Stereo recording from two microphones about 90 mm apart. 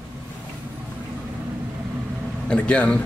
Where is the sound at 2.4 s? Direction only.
10° left (ahead or behind).